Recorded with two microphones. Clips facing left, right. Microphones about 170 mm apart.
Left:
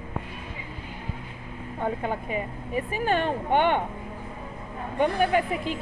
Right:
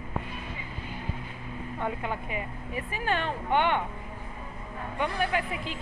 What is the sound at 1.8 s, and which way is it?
A woman's voice, 40° left (ahead or behind).